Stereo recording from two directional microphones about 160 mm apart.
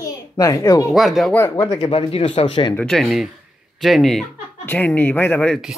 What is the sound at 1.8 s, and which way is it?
Speech, 35° left (ahead or behind).